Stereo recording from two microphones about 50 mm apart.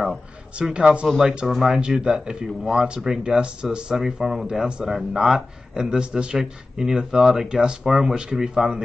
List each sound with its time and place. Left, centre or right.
0.7 s speech: right